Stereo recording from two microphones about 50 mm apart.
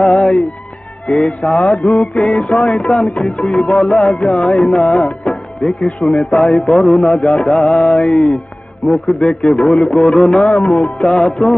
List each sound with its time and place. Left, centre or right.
1.2 s music: left
6.4 s music: centre
8.8 s a man's voice: centre
10.6 s music: left